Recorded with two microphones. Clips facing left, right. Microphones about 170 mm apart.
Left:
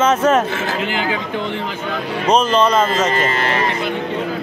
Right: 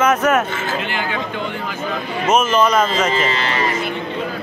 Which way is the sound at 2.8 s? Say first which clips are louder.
Left 1 dB; 50° left (ahead or behind).